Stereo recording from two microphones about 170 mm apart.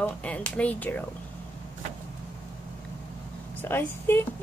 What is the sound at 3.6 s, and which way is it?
Speech, 10° left (ahead or behind).